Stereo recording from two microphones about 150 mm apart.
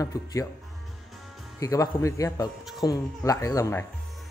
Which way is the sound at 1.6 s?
20° left (ahead or behind).